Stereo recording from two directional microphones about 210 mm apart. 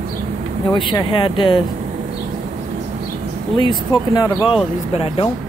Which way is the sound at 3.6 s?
20° left (ahead or behind).